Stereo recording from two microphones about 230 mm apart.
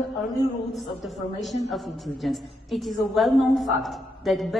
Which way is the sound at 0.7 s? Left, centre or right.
Centre.